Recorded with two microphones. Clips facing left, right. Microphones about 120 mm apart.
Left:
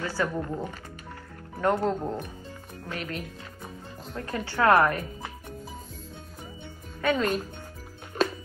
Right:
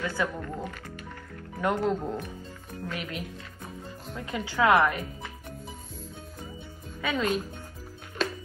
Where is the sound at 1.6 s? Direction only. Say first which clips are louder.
Left 2 dB; 35° left (ahead or behind).